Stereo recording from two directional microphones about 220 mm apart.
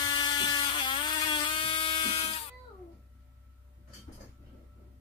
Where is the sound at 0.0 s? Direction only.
20° left (ahead or behind).